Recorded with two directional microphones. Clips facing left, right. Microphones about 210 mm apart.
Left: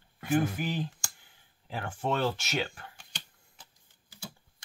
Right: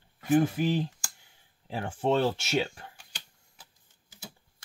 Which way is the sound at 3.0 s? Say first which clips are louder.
Left 2 dB; 10° right (ahead or behind).